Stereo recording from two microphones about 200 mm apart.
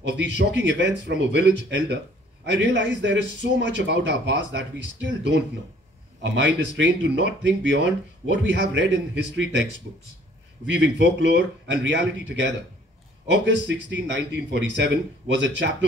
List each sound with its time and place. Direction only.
0.0 s a man's voice: 60° right (ahead or behind)
10.7 s a man's voice: 65° right (ahead or behind)